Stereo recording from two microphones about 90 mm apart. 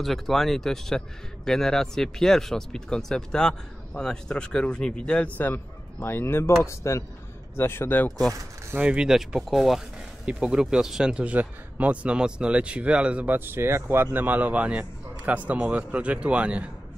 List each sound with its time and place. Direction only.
0.0 s a man's voice: centre (ahead or behind); by 8.1 s 25° left (ahead or behind)
8.7 s a man's voice: 10° right (ahead or behind)